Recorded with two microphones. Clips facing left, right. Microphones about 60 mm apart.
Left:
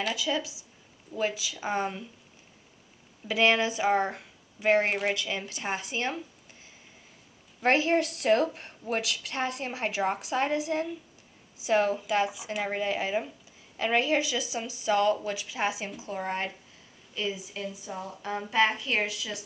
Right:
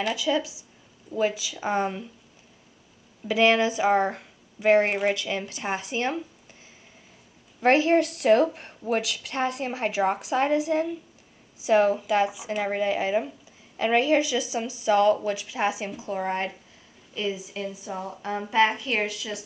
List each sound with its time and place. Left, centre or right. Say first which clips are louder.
0.0 s a woman's voice: right 4 dB; centre
3.3 s a woman's voice: right 4 dB; centre
7.7 s a woman's voice: right 4 dB; centre
12.0 s a woman's voice: right 4 dB; centre
12.3 s a woman's voice: right 4 dB; centre
14.2 s a woman's voice: right 5 dB; centre
14.9 s a woman's voice: right 5 dB; centre